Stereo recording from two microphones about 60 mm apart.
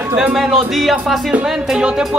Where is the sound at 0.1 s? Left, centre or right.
Centre.